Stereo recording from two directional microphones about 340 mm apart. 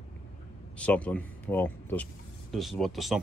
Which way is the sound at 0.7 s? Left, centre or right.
Centre.